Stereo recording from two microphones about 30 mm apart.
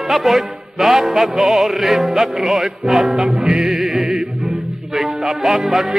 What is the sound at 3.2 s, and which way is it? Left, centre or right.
Music, right.